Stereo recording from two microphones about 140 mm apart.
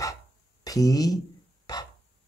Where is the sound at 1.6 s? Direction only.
30° left (ahead or behind).